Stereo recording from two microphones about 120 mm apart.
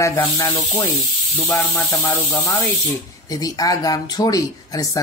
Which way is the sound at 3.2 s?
30° left (ahead or behind).